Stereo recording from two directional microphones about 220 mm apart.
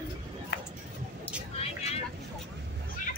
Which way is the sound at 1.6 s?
30° left (ahead or behind).